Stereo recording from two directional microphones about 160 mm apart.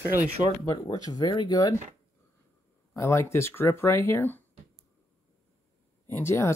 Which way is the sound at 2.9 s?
15° left (ahead or behind).